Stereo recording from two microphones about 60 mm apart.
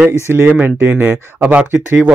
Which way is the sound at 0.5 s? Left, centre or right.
Right.